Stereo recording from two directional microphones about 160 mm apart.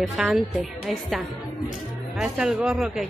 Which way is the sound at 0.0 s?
Centre (ahead or behind).